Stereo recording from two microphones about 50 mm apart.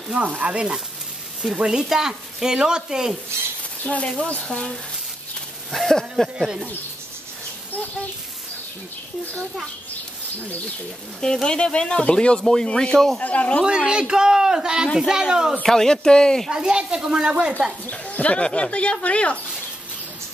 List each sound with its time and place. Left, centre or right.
0.2 s speech: right; by 3.2 s centre
3.8 s speech: left; by 6.2 s centre
11.1 s speech: centre
13.2 s speech: left
13.7 s speech: centre
15.6 s speech: centre
16.4 s speech: centre
17.9 s speech: left